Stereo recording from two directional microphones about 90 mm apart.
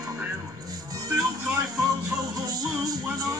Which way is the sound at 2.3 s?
45° right (ahead or behind).